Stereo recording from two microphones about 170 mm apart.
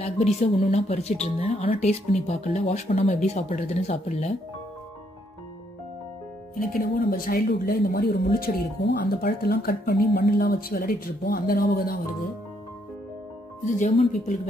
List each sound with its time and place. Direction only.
0.0 s speech: 35° left (ahead or behind)
6.6 s speech: 60° left (ahead or behind)
13.7 s speech: 45° left (ahead or behind)